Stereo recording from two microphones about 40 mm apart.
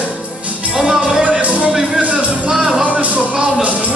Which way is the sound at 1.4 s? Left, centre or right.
Right.